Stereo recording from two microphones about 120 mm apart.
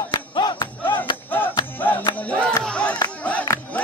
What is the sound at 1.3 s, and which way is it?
Music, 15° left (ahead or behind).